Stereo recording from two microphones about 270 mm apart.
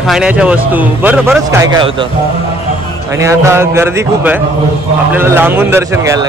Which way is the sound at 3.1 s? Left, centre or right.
Centre.